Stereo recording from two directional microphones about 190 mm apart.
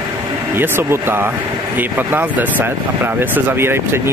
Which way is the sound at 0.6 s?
10° right (ahead or behind).